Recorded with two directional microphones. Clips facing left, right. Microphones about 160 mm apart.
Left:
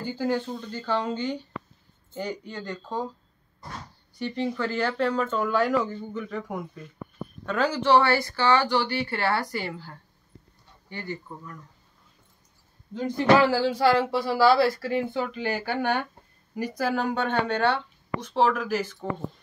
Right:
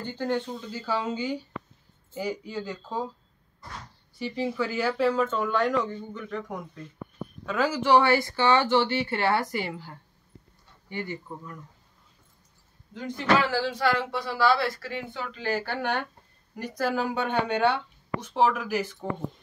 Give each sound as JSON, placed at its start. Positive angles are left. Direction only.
{"t": 0.0, "sound": "speech", "side_deg": 5}
{"t": 0.6, "sound": "speech", "side_deg": -5}
{"t": 4.1, "sound": "speech", "side_deg": -5}
{"t": 12.9, "sound": "speech", "side_deg": 35}